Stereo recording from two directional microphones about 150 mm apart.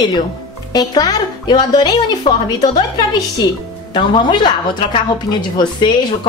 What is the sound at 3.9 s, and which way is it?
Speech, 30° left (ahead or behind).